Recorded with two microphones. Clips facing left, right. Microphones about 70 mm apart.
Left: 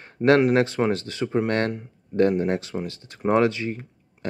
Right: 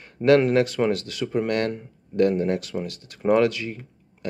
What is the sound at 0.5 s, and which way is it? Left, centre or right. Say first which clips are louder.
Speech: even; left.